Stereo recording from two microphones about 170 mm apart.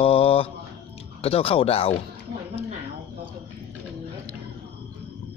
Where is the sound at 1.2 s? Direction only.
35° left (ahead or behind).